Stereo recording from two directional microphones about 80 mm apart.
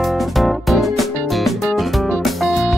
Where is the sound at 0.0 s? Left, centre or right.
Centre.